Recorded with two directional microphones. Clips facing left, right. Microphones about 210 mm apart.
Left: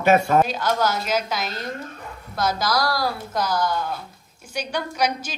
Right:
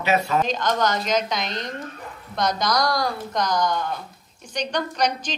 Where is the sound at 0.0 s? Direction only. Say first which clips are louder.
Left 4 dB; 50° left (ahead or behind).